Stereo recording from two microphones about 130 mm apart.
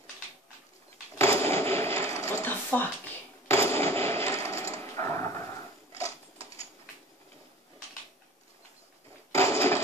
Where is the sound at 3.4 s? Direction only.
20° left (ahead or behind).